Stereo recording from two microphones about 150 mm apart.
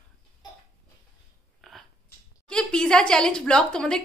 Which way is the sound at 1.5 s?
Centre (ahead or behind).